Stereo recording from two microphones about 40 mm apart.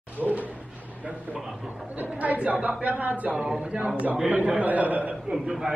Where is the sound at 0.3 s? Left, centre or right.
Right.